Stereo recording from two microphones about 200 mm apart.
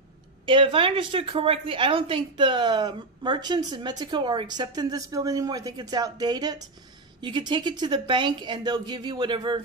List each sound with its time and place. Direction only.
0.5 s a woman's voice: 25° right (ahead or behind)